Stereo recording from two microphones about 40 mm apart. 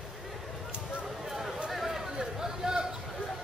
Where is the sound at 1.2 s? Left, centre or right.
Centre.